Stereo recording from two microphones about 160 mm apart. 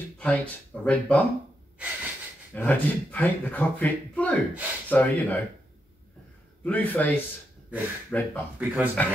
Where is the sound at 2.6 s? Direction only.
10° left (ahead or behind).